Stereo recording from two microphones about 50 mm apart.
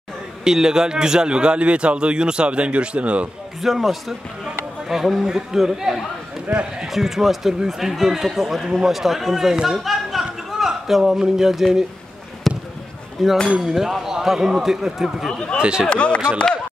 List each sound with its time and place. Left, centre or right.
0.4 s a man's voice: centre
3.6 s speech: centre
6.9 s speech: centre
9.7 s a sound: centre
12.5 s basketball bounce: centre
13.2 s speech: centre
15.3 s speech: centre
15.6 s a man's voice: centre
15.9 s speech: left